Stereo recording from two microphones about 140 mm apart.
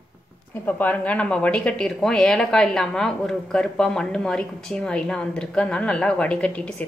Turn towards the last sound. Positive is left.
turn(degrees=10)  # may be behind; listen again after turning